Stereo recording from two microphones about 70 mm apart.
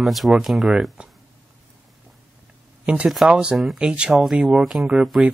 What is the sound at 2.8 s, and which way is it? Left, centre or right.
Speech, centre.